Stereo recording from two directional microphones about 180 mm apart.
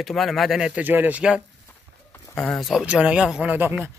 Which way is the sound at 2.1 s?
5° left (ahead or behind).